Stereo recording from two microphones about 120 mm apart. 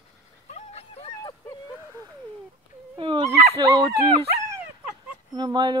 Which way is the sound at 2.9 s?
45° right (ahead or behind).